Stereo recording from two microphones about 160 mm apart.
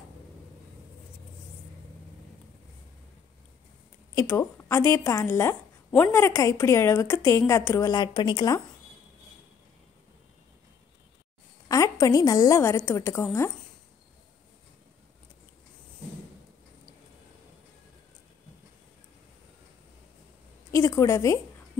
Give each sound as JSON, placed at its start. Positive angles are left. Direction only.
{"t": 4.1, "sound": "a woman's voice", "side_deg": 20}
{"t": 11.7, "sound": "a woman's voice", "side_deg": 20}
{"t": 20.7, "sound": "a woman's voice", "side_deg": 20}